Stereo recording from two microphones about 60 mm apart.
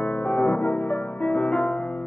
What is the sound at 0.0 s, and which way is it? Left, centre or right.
Music, left.